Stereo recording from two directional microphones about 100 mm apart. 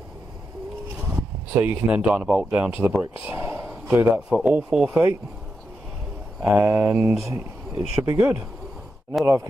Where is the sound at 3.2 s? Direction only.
25° right (ahead or behind).